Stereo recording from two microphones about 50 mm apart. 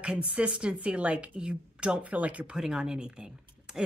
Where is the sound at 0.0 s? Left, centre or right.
Right.